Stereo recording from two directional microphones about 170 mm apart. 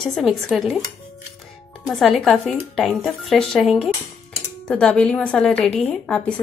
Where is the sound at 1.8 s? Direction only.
Centre (ahead or behind).